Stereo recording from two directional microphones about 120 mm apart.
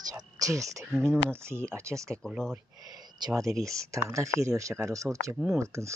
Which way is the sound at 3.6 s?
25° right (ahead or behind).